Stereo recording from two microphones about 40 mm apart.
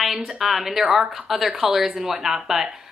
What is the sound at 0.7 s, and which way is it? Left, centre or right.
Speech, right.